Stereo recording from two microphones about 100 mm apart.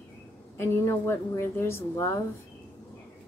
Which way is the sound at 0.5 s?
25° left (ahead or behind).